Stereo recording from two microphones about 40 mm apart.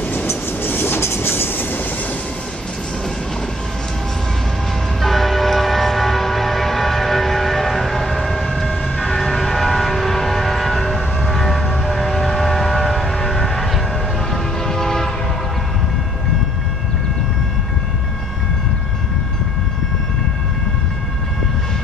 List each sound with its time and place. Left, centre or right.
0.3 s train: left
5.0 s train: centre
11.8 s vehicle: centre
14.3 s train: centre